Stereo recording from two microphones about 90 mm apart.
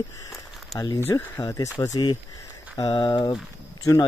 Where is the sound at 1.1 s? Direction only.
40° left (ahead or behind).